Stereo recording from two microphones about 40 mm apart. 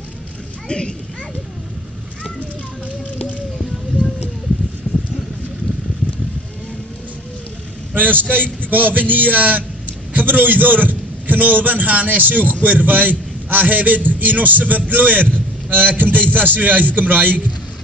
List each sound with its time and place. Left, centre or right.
0.7 s speech: left
4.9 s clip-clop: right
7.9 s vehicle: right
8.3 s a man's voice: right